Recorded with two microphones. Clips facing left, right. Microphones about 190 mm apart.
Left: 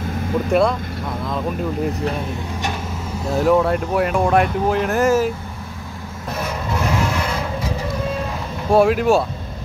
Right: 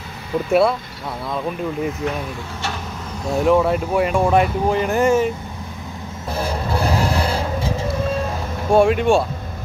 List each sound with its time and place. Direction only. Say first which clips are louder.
0.5 s speech: right 2 dB; 5° right (ahead or behind)
3.3 s speech: even; centre (ahead or behind)
6.3 s a sound: right 2 dB; 30° right (ahead or behind)
8.7 s speech: even; centre (ahead or behind)